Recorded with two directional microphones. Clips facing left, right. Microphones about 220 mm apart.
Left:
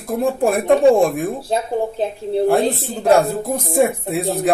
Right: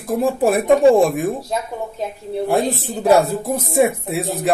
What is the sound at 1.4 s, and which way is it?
A woman's voice, 30° left (ahead or behind).